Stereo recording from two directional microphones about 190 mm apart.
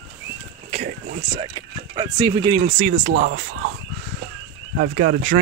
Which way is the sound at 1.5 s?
20° right (ahead or behind).